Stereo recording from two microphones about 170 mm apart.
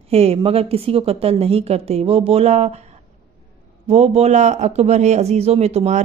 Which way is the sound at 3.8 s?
40° right (ahead or behind).